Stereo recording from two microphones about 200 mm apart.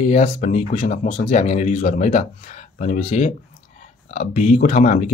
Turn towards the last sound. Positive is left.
turn(degrees=35)  # may be behind; listen again after turning